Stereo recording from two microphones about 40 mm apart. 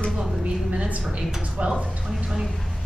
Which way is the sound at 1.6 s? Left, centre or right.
Right.